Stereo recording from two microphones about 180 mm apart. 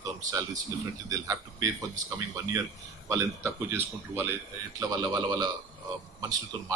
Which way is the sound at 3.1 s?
15° right (ahead or behind).